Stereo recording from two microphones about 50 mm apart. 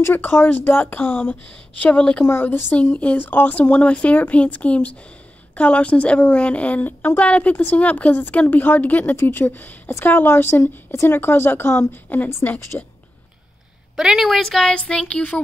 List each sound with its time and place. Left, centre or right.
0.0 s a woman's voice: left
2.4 s speech: left
2.7 s a woman's voice: left
9.8 s speech: left
11.9 s a woman's voice: left
12.7 s speech: left
13.9 s a woman's voice: centre
14.7 s speech: centre